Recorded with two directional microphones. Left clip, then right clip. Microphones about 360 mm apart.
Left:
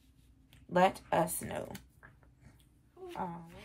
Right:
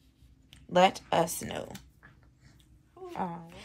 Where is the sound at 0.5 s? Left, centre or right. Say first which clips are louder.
Right 5 dB; centre.